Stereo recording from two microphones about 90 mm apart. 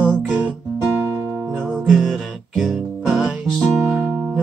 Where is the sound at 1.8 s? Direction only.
5° right (ahead or behind).